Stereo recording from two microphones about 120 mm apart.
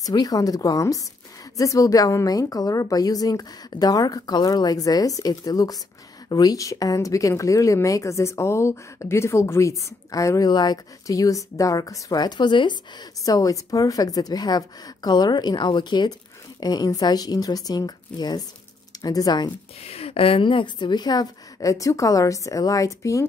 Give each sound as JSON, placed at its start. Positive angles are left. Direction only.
{"t": 0.0, "sound": "a woman's voice", "side_deg": 30}
{"t": 13.2, "sound": "a woman's voice", "side_deg": 30}
{"t": 19.8, "sound": "a woman's voice", "side_deg": 55}